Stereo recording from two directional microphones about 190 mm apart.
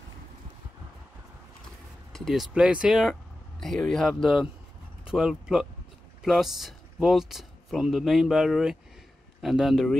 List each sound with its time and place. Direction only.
2.1 s a man's voice: centre (ahead or behind)